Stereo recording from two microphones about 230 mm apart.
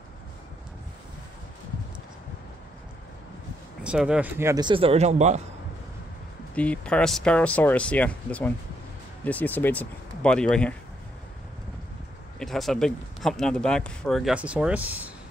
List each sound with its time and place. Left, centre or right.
3.8 s speech: centre; by 5.4 s right
6.5 s speech: centre
12.4 s speech: centre